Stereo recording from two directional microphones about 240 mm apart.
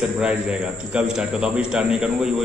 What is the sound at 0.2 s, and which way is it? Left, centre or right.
A man's voice, centre.